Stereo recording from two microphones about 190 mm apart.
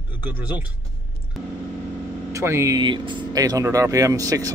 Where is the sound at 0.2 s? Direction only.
10° right (ahead or behind).